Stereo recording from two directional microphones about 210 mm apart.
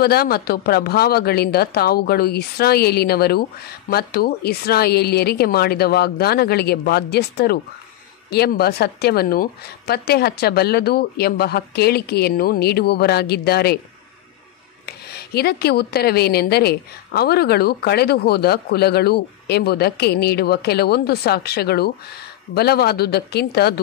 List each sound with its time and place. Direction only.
0.0 s speech: 45° left (ahead or behind)
14.9 s speech: 50° left (ahead or behind)